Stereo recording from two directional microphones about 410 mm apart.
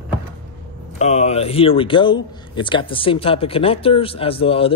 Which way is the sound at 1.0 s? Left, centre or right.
Centre.